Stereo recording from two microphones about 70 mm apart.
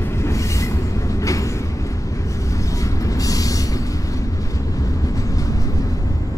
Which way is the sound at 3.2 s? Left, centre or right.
Left.